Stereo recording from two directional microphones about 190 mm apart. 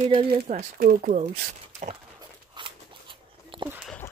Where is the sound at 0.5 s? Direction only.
45° right (ahead or behind).